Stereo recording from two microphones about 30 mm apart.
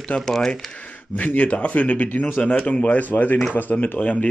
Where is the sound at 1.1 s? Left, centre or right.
Left.